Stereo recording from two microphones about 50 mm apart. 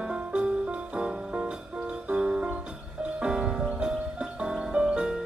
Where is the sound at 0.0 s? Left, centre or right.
Centre.